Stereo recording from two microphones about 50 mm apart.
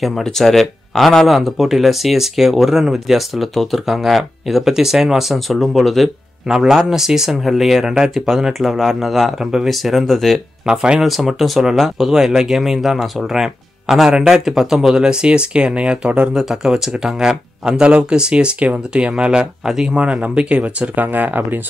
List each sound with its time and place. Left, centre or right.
0.0 s speech: centre
6.4 s speech: centre
10.6 s speech: centre
11.0 s speech: centre; by 16.3 s right
16.3 s speech: centre; by 21.5 s right